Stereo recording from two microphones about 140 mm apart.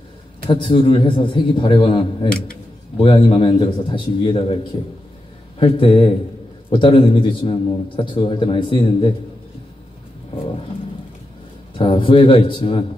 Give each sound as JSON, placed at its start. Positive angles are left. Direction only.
{"t": 0.5, "sound": "a man's voice", "side_deg": 35}
{"t": 5.6, "sound": "a man's voice", "side_deg": 40}
{"t": 11.8, "sound": "a man's voice", "side_deg": 40}